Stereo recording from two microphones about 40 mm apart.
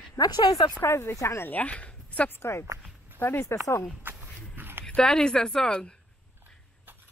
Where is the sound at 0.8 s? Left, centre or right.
Left.